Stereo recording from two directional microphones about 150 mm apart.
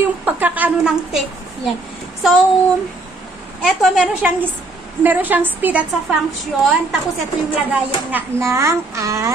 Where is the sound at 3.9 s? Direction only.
5° right (ahead or behind).